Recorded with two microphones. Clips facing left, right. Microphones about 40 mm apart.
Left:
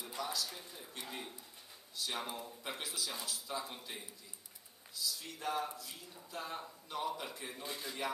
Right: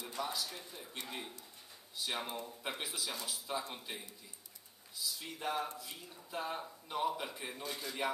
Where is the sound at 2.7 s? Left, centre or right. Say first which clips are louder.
Right 1 dB; centre.